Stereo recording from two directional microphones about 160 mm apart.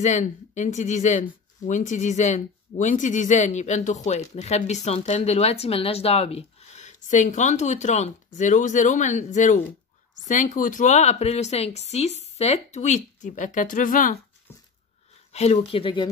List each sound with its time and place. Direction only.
0.0 s speech: 50° left (ahead or behind)
15.3 s speech: 40° left (ahead or behind)